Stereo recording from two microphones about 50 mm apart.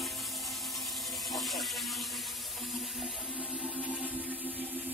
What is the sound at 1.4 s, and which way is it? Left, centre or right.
Water, centre.